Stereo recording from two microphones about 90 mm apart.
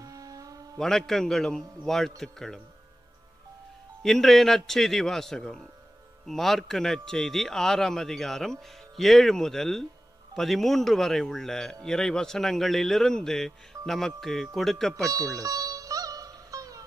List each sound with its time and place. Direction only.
0.0 s a sound: 40° right (ahead or behind)
0.7 s a man's voice: 5° left (ahead or behind)
4.0 s a man's voice: centre (ahead or behind)
15.4 s music: 40° right (ahead or behind)